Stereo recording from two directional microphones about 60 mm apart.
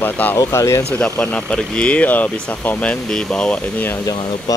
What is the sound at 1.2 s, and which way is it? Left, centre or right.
Speech, centre.